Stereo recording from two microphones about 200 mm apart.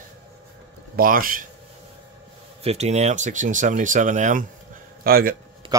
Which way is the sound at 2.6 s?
35° right (ahead or behind).